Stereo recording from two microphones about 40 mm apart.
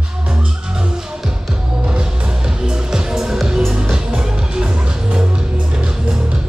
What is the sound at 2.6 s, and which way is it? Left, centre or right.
Music, centre.